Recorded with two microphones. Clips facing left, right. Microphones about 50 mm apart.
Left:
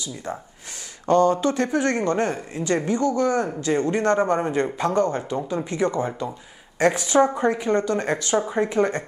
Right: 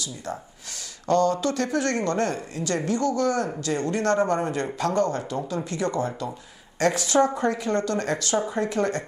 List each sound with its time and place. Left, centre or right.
0.0 s speech: left